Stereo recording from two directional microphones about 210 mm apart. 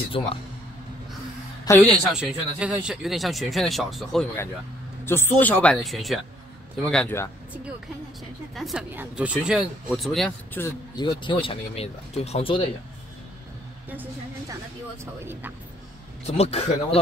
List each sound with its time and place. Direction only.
0.2 s speech: 25° left (ahead or behind)
1.6 s a sound: 15° left (ahead or behind)
2.1 s speech: 5° right (ahead or behind)
8.5 s speech: centre (ahead or behind)
11.0 s speech: 20° left (ahead or behind)
16.3 s speech: 30° left (ahead or behind)